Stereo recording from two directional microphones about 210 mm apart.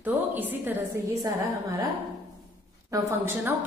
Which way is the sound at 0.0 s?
10° right (ahead or behind).